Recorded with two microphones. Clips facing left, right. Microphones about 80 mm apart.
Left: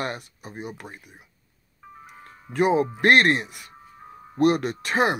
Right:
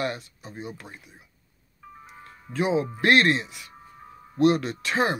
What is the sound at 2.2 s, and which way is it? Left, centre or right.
Music, left.